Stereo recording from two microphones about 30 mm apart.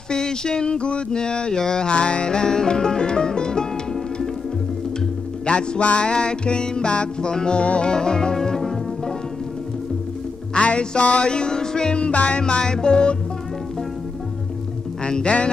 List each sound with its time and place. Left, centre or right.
0.1 s music: left
1.9 s music: left
5.5 s music: left
5.8 s music: left
7.6 s music: left
7.9 s music: left
8.4 s music: centre
10.5 s music: left
11.2 s music: left
12.1 s music: left
12.4 s music: left
15.2 s music: left